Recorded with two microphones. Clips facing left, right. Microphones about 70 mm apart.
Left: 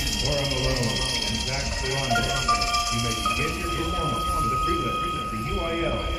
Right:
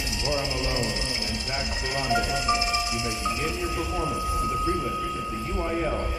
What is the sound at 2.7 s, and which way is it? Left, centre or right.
Speech, right.